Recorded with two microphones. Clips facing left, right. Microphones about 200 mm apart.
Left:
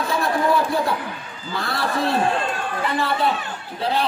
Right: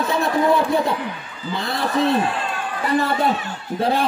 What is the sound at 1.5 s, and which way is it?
Speech, 20° right (ahead or behind).